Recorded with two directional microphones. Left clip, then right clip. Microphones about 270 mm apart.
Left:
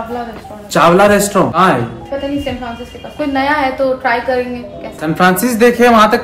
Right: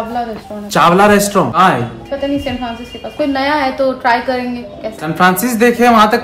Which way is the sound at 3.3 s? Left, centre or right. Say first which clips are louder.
Left 2 dB; right.